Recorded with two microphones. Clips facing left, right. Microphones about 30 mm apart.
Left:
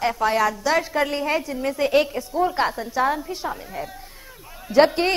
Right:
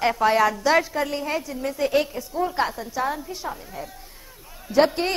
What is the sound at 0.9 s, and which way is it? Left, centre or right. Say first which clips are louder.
A woman's voice: left 3 dB; centre.